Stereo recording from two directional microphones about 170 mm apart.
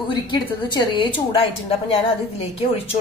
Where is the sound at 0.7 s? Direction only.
25° left (ahead or behind).